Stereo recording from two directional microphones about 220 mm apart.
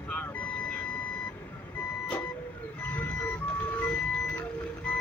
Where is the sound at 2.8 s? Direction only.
5° left (ahead or behind).